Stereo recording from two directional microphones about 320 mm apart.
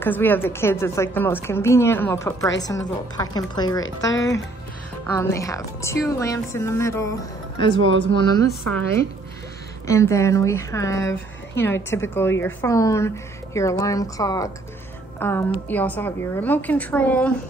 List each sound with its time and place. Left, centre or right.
0.0 s speech: centre
3.8 s speech: left
5.1 s speech: centre
7.8 s speech: right
8.5 s a woman's voice: centre
9.8 s a woman's voice: centre